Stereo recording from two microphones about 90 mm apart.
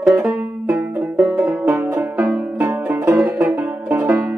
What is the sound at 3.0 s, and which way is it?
Music, 30° right (ahead or behind).